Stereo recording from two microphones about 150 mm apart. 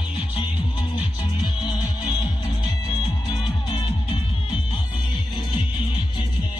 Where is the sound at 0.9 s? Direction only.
30° left (ahead or behind).